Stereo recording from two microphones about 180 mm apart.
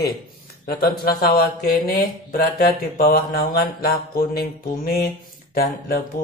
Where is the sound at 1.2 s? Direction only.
55° left (ahead or behind).